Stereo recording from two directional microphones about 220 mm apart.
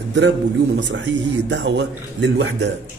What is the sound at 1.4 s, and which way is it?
Speech, 55° right (ahead or behind).